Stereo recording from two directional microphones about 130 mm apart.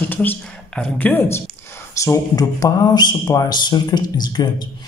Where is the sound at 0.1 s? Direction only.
15° left (ahead or behind).